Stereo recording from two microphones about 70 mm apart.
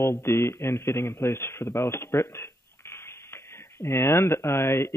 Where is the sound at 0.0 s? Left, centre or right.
Left.